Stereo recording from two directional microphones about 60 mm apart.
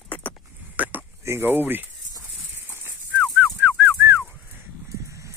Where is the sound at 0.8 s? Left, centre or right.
Right.